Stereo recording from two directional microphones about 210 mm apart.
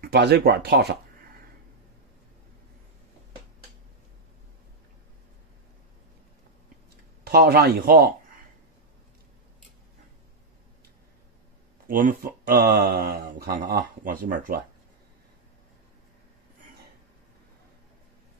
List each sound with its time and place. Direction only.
0.0 s speech: 50° right (ahead or behind)
7.2 s speech: 45° right (ahead or behind)
11.9 s speech: 40° right (ahead or behind)